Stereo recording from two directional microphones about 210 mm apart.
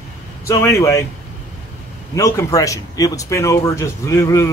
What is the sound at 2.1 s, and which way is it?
Speech, 15° left (ahead or behind).